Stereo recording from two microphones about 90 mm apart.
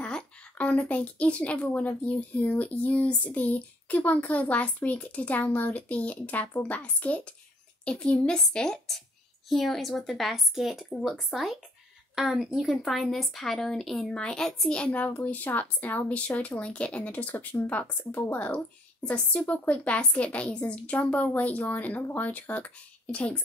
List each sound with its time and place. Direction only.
0.0 s a woman's voice: 15° left (ahead or behind)